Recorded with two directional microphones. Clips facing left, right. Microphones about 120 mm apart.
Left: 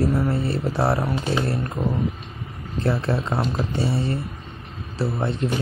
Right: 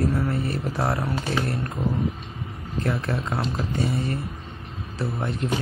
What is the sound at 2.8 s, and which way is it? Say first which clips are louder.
Speech: left 3 dB; 30° left (ahead or behind).